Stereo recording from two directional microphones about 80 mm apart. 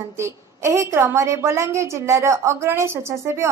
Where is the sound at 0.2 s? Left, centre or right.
Right.